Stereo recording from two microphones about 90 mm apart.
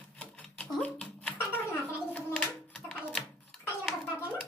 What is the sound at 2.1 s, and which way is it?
Hands, 20° left (ahead or behind).